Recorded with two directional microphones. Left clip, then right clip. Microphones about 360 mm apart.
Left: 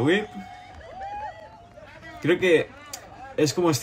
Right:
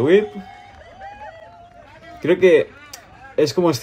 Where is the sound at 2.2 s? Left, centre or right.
Centre.